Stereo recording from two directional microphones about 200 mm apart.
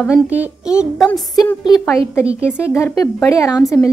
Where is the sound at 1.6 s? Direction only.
20° left (ahead or behind).